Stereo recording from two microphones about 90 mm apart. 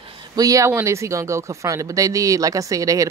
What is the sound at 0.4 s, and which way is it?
Speech, 40° right (ahead or behind).